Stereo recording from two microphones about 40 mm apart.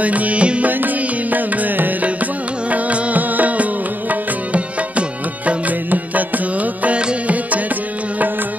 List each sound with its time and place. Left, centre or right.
0.0 s music: right
0.7 s music: right